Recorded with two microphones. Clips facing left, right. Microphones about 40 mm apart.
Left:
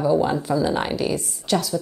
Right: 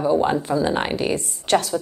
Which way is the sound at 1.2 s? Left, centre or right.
Right.